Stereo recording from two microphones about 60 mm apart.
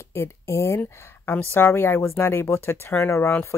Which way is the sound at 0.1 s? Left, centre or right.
Left.